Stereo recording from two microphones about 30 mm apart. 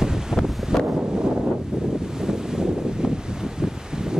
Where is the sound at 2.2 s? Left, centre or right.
Centre.